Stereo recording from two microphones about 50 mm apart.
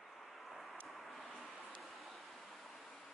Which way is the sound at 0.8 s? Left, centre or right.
Centre.